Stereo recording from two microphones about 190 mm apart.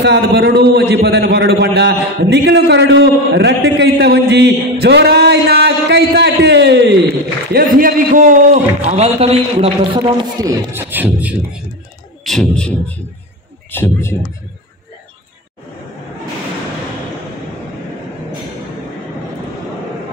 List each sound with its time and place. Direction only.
0.0 s a man's voice: 60° right (ahead or behind)
7.5 s a man's voice: 50° right (ahead or behind); by 11.6 s 10° right (ahead or behind)
12.3 s a man's voice: 5° left (ahead or behind)